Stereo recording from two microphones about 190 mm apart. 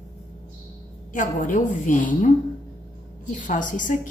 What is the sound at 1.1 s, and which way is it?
A woman's voice, 45° left (ahead or behind).